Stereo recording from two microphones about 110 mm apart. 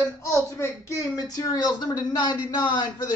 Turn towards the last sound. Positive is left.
turn(degrees=40)  # may be behind; listen again after turning